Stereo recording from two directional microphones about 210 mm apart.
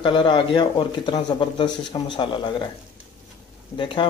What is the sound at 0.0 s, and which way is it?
Speech, 20° left (ahead or behind).